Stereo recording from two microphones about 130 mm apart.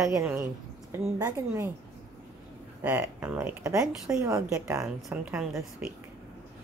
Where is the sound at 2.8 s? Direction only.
15° right (ahead or behind).